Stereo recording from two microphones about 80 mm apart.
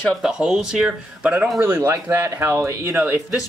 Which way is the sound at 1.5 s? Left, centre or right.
Right.